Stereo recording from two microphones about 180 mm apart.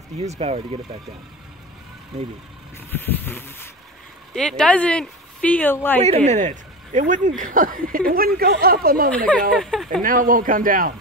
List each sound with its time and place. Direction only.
0.4 s speech: 35° right (ahead or behind)
2.9 s speech: 10° left (ahead or behind)
6.0 s speech: 40° right (ahead or behind); by 9.1 s 55° right (ahead or behind)
9.1 s speech: 5° left (ahead or behind)
10.0 s speech: 50° right (ahead or behind)